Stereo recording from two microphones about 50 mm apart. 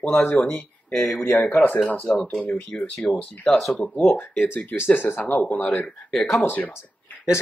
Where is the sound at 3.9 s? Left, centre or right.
Left.